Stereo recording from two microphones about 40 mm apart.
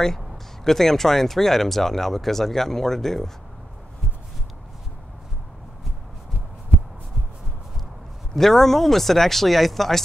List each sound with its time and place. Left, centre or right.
0.7 s speech: centre
8.4 s speech: centre